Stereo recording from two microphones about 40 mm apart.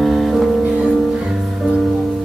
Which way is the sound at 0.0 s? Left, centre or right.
Centre.